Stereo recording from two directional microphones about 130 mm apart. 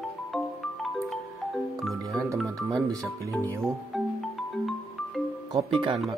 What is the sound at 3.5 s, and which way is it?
Speech, centre (ahead or behind).